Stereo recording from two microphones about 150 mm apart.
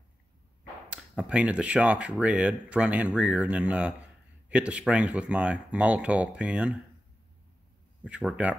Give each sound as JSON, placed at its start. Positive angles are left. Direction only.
{"t": 0.8, "sound": "speech", "side_deg": -5}
{"t": 8.0, "sound": "speech", "side_deg": -5}